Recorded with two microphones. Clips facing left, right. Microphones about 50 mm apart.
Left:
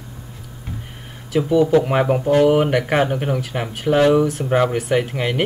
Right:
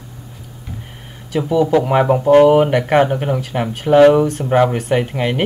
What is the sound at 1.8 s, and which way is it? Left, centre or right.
Speech, centre.